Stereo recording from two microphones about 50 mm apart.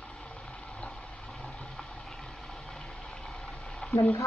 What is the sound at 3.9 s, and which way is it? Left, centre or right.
Frying, left.